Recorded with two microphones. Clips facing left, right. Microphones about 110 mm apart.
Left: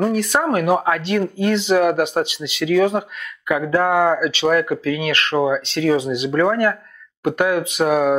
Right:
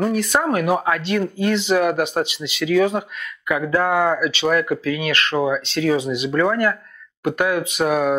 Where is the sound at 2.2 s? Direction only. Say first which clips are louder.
Left 1 dB; 65° left (ahead or behind).